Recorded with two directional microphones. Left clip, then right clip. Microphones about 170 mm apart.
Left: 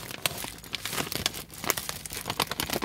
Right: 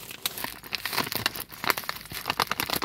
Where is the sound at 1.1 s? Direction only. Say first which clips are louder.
Right 2 dB; 10° left (ahead or behind).